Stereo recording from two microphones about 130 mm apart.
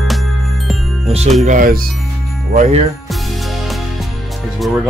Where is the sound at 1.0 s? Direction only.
55° right (ahead or behind).